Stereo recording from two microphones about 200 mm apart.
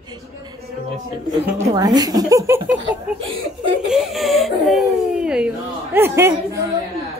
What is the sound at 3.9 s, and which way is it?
Speech, centre (ahead or behind).